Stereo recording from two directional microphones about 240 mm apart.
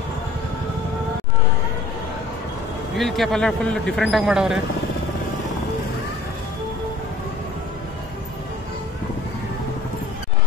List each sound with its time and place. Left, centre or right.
3.0 s a man's voice: centre